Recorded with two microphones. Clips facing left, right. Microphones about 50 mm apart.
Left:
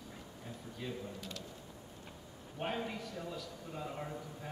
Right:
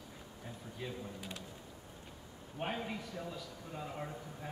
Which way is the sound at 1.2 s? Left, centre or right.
Centre.